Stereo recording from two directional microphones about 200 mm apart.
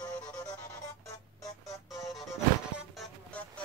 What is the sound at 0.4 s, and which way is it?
Music, 15° left (ahead or behind).